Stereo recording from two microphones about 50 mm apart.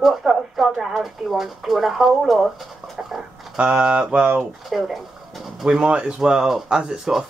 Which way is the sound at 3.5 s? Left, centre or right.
Right.